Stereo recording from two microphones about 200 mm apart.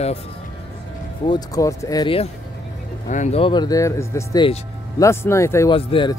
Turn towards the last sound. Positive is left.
turn(degrees=25)  # may be behind; listen again after turning